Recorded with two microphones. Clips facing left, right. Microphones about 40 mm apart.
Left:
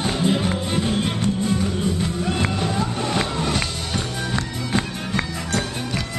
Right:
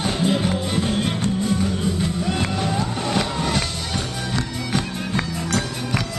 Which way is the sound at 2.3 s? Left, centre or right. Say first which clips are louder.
Even; centre.